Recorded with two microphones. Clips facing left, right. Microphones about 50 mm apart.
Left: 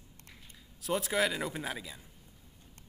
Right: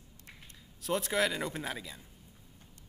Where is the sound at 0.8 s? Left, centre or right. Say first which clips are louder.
Even; centre.